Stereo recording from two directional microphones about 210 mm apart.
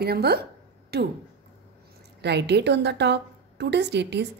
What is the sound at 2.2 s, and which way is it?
A woman's voice, 55° right (ahead or behind).